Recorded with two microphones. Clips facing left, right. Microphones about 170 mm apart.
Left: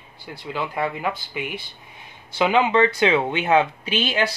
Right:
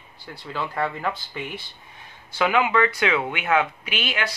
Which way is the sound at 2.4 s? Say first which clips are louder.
Left 3 dB; 25° left (ahead or behind).